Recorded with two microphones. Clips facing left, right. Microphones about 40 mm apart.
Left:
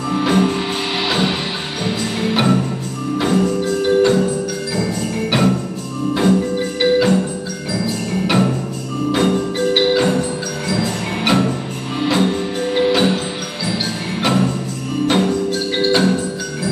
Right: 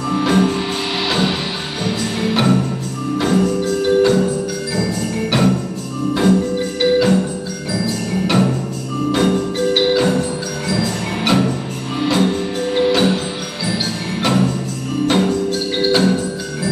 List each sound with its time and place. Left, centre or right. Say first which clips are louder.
0.1 s music: even; centre
5.3 s jingle bell: even; centre
6.1 s music: even; centre
8.3 s music: even; centre
10.7 s tubular bells: even; centre
12.0 s music: even; centre
15.0 s music: even; centre